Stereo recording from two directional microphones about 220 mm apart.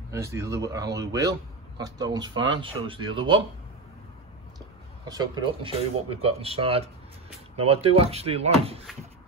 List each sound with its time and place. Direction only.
0.1 s speech: 15° right (ahead or behind)
4.6 s speech: 15° right (ahead or behind)